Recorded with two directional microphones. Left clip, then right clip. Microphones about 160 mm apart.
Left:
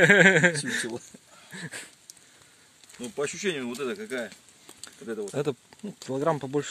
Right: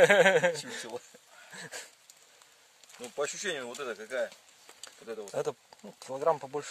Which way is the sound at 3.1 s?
65° right (ahead or behind).